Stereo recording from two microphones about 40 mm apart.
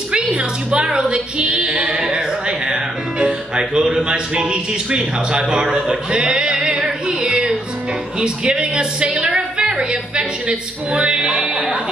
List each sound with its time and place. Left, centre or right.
0.1 s speech: right
5.7 s a sound: right
8.2 s speech: right